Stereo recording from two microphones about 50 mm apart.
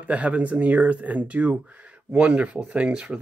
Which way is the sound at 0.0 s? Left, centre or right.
Right.